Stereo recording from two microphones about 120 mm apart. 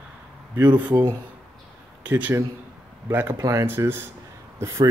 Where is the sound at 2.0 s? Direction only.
15° right (ahead or behind).